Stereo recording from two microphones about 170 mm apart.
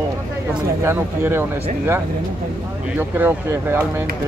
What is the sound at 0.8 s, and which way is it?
Speech, 15° right (ahead or behind).